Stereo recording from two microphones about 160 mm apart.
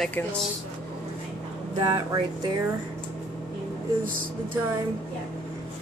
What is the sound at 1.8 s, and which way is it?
Speech, 30° right (ahead or behind).